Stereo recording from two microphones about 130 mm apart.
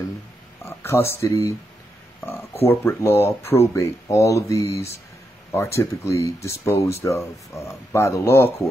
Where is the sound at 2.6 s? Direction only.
20° left (ahead or behind).